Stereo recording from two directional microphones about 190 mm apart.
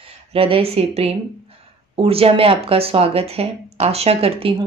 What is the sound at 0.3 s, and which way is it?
Speech, 30° right (ahead or behind).